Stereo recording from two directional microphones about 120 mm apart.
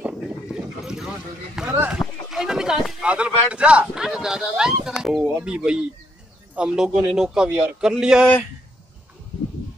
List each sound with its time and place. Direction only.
0.0 s boat: 5° right (ahead or behind)
1.7 s a man's voice: 15° right (ahead or behind)
2.0 s a sound: 5° right (ahead or behind)
4.9 s a man's voice: centre (ahead or behind)